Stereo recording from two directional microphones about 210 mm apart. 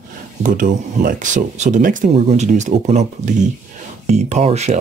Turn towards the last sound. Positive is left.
turn(degrees=-30)  # may be behind; listen again after turning